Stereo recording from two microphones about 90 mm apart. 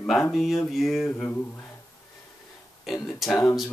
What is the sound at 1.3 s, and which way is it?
Speech, 20° left (ahead or behind).